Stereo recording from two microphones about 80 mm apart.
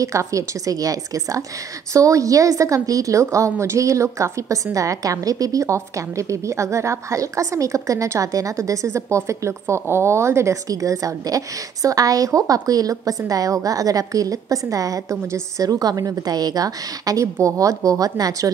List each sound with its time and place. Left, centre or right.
0.0 s a woman's voice: right